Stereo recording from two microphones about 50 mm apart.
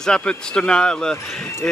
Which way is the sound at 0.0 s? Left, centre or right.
Centre.